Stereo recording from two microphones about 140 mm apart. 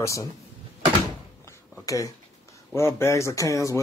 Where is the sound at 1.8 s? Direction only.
25° left (ahead or behind).